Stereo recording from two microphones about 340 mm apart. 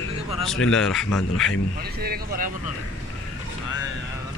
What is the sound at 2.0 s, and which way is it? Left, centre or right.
Speech, right.